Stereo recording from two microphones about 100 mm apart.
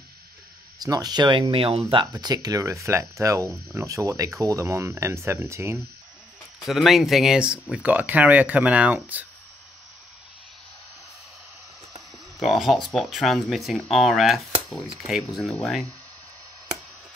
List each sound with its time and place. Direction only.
0.7 s speech: 40° right (ahead or behind)
1.5 s speech: 70° right (ahead or behind)
2.1 s speech: 40° right (ahead or behind)
6.6 s speech: centre (ahead or behind)
12.4 s speech: centre (ahead or behind)